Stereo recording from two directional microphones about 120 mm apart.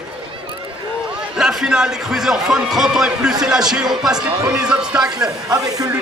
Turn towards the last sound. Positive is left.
turn(degrees=-30)  # may be behind; listen again after turning